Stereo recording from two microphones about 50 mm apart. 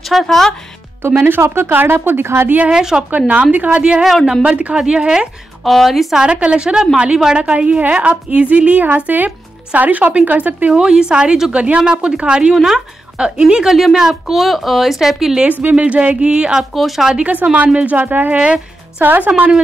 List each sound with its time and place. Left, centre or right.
0.1 s speech: centre
1.1 s speech: right
1.5 s speech: right
2.7 s a woman's voice: centre
3.1 s a woman's voice: right
5.6 s speech: centre
6.1 s a woman's voice: right
10.7 s a woman's voice: centre
13.7 s a woman's voice: centre
14.4 s speech: centre
15.6 s a woman's voice: right
16.7 s speech: centre
17.1 s a woman's voice: right